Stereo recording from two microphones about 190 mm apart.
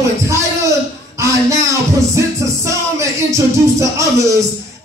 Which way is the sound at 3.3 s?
15° right (ahead or behind).